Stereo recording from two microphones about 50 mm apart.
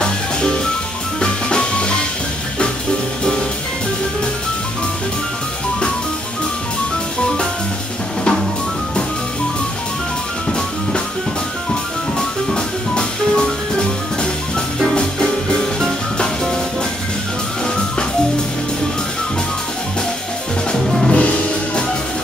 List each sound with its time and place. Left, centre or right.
0.0 s music: centre
8.2 s drum kit: centre
12.2 s music: centre
20.7 s music: centre
21.1 s music: left